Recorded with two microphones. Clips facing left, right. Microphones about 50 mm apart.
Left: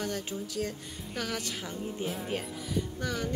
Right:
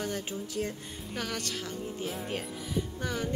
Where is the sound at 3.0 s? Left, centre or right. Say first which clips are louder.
Even; centre.